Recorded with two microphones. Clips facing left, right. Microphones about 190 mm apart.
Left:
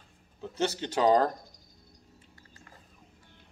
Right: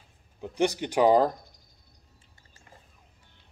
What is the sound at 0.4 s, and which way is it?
Speech, 15° right (ahead or behind).